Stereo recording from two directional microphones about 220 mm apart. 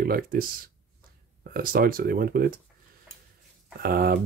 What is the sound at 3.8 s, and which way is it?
Speech, 40° right (ahead or behind).